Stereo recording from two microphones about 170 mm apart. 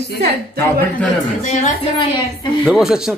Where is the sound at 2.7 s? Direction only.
5° right (ahead or behind).